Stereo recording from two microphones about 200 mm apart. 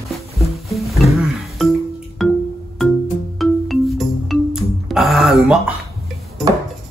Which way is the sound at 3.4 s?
Centre (ahead or behind).